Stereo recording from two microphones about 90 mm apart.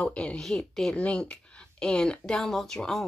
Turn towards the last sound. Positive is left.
turn(degrees=5)  # may be behind; listen again after turning